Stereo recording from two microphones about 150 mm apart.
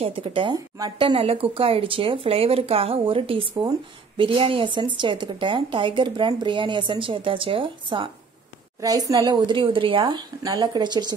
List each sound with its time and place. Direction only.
0.0 s speech: 40° right (ahead or behind)
8.8 s a woman's voice: 25° right (ahead or behind)